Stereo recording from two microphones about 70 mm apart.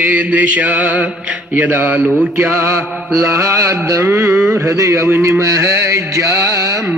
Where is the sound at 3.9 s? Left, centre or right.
Right.